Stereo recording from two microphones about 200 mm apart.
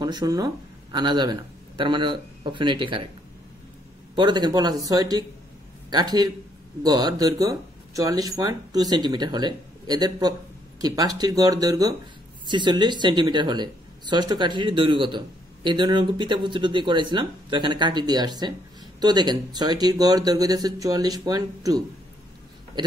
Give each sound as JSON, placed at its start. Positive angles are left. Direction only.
{"t": 0.0, "sound": "speech", "side_deg": -20}
{"t": 4.1, "sound": "speech", "side_deg": -25}